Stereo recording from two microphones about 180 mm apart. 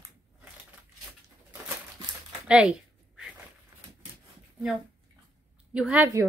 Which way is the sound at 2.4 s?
5° right (ahead or behind).